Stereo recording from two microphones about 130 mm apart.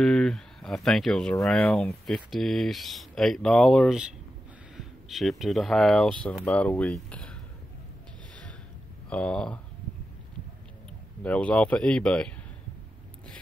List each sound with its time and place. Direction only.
0.0 s speech: 5° left (ahead or behind)
4.7 s a sound: centre (ahead or behind)
5.4 s speech: centre (ahead or behind)
9.1 s speech: 10° left (ahead or behind)
11.2 s speech: 10° left (ahead or behind)